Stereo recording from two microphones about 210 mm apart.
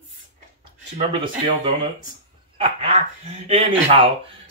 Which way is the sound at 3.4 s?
30° right (ahead or behind).